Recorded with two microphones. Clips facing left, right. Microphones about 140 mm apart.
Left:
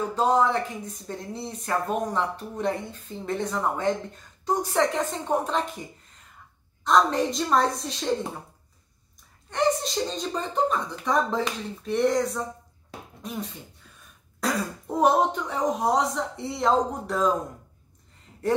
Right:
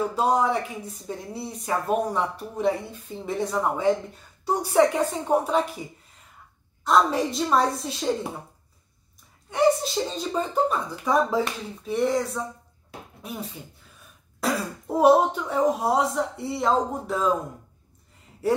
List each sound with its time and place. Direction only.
0.1 s speech: 10° right (ahead or behind)
9.5 s speech: 5° right (ahead or behind)
15.0 s speech: 5° right (ahead or behind)